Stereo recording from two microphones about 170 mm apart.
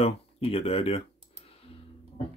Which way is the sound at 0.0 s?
35° left (ahead or behind).